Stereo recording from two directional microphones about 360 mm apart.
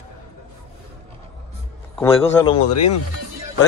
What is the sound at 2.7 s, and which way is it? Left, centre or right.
Speech, left.